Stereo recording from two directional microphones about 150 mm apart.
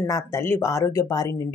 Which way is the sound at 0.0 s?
20° left (ahead or behind).